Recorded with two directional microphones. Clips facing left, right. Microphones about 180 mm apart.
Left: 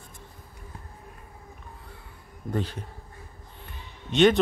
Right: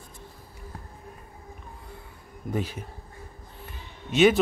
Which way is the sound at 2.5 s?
10° right (ahead or behind).